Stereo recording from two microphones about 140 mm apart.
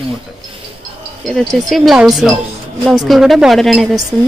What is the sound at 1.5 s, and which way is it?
A woman's voice, centre (ahead or behind).